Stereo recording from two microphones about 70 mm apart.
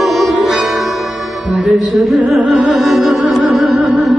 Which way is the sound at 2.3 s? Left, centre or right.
Centre.